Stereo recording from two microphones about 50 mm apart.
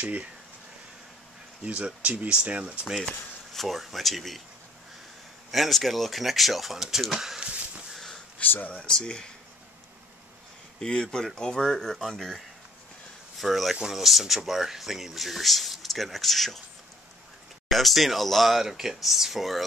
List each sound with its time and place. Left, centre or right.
0.0 s speech: right
1.6 s speech: right
3.5 s speech: centre
5.5 s speech: centre; by 7.8 s right
7.9 s a sound: centre
8.4 s speech: left
8.8 s speech: centre
10.8 s speech: centre
13.4 s speech: centre
17.6 s speech: centre